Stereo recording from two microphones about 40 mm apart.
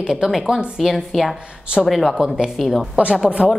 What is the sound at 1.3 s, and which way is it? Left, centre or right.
Speech, right.